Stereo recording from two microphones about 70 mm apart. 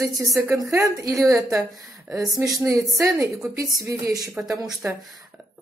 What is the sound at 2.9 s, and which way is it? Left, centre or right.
A woman's voice, right.